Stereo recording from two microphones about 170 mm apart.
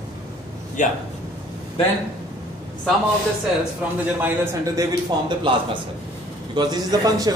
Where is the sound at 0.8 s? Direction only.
50° left (ahead or behind).